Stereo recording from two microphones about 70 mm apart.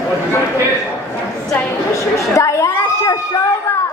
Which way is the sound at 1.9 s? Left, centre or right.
Left.